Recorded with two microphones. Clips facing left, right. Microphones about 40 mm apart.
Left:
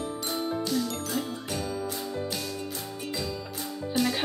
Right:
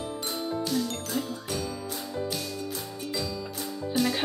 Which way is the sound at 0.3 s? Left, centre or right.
Centre.